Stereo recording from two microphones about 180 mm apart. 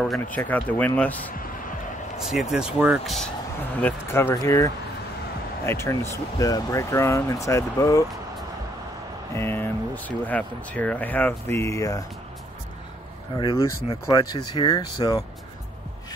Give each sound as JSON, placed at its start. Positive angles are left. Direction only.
{"t": 0.4, "sound": "speech", "side_deg": 10}
{"t": 2.2, "sound": "speech", "side_deg": -5}
{"t": 3.8, "sound": "speech", "side_deg": 15}
{"t": 5.7, "sound": "speech", "side_deg": 15}
{"t": 9.3, "sound": "speech", "side_deg": 15}
{"t": 13.4, "sound": "speech", "side_deg": 25}